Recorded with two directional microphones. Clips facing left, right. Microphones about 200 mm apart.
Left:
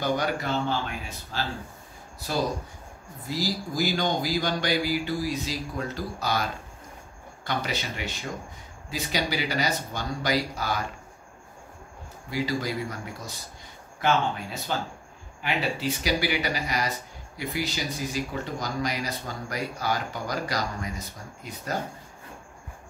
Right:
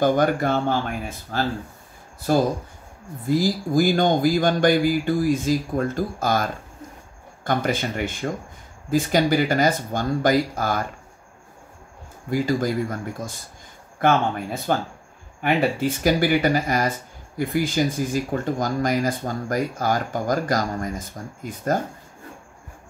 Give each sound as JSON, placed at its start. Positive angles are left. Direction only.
{"t": 0.0, "sound": "speech", "side_deg": -50}
{"t": 3.3, "sound": "speech", "side_deg": -50}
{"t": 12.3, "sound": "speech", "side_deg": -50}